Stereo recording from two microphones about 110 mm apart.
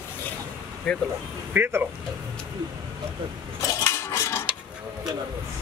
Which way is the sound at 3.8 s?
30° left (ahead or behind).